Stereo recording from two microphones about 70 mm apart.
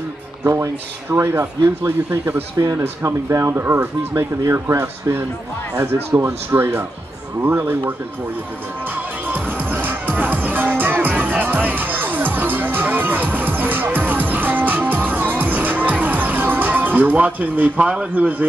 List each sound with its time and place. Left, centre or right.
1.1 s speech: right
2.5 s speech: right
9.3 s music: right